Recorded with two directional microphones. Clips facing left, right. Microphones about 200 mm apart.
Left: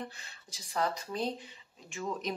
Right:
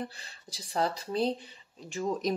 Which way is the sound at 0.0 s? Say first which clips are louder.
Right 4 dB; 35° right (ahead or behind).